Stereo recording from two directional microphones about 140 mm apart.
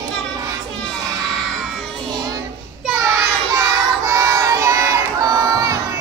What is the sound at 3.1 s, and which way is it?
Child singing, 20° right (ahead or behind).